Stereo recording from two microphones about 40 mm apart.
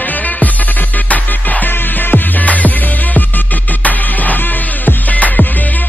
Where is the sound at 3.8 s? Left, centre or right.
Left.